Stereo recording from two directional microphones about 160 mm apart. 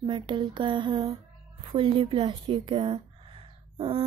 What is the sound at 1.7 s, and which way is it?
A woman's voice, 30° right (ahead or behind).